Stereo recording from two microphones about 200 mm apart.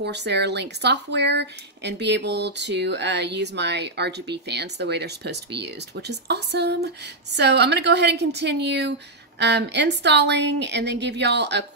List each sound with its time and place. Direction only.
0.0 s speech: 55° right (ahead or behind)